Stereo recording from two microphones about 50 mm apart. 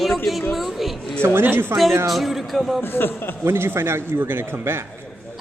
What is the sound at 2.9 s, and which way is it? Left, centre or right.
Speech, left.